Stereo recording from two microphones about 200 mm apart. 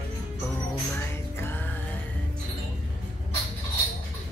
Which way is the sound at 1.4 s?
10° left (ahead or behind).